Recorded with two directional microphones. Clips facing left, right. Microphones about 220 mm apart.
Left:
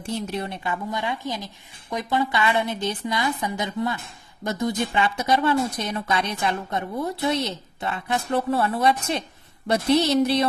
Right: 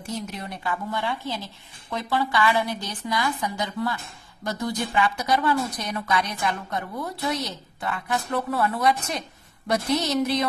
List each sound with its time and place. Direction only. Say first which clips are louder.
0.0 s a woman's voice: left 4 dB; 30° left (ahead or behind)